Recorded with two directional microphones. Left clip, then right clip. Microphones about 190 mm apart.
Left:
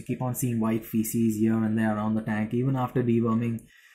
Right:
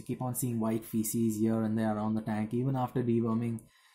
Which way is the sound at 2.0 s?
20° right (ahead or behind).